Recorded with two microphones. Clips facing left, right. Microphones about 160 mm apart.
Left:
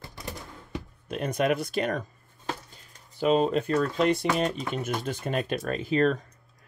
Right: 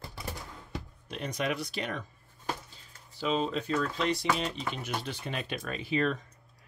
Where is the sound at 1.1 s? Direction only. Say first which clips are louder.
Left 7 dB; 50° left (ahead or behind).